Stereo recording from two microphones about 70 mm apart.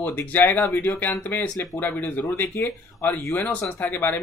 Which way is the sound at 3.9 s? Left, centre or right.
Left.